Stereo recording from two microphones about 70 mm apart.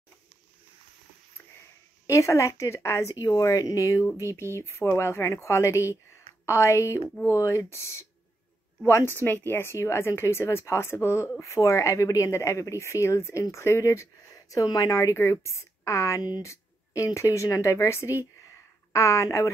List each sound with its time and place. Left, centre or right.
2.0 s speech: left